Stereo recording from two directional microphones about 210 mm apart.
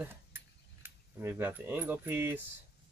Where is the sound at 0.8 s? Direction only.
10° right (ahead or behind).